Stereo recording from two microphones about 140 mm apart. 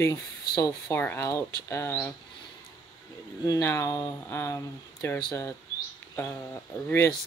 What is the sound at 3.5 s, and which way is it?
Speech, 20° left (ahead or behind).